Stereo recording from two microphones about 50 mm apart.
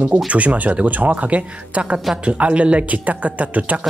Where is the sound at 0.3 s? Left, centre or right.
Right.